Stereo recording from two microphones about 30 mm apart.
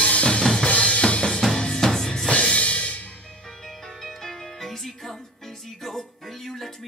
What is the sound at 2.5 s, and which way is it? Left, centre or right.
Music, left.